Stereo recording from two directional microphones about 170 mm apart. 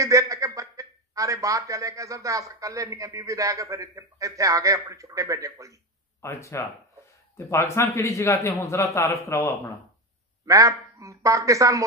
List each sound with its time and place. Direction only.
0.0 s a man's voice: 20° right (ahead or behind)
6.2 s a man's voice: 15° left (ahead or behind)
10.4 s a man's voice: 20° right (ahead or behind)